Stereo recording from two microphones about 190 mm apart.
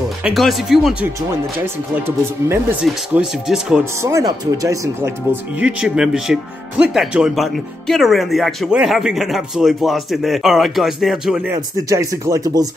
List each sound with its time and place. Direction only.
0.2 s speech: centre (ahead or behind)
2.0 s speech: 10° right (ahead or behind)
4.0 s speech: 20° right (ahead or behind)
11.9 s speech: 15° right (ahead or behind)